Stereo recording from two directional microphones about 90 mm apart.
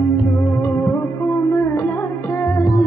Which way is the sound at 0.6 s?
25° left (ahead or behind).